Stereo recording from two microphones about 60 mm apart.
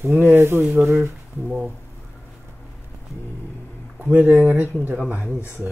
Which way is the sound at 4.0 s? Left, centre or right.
Right.